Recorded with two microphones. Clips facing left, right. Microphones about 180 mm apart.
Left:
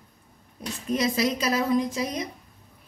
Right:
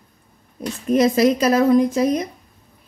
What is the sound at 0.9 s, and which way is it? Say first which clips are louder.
A woman's voice: right 9 dB; 50° right (ahead or behind).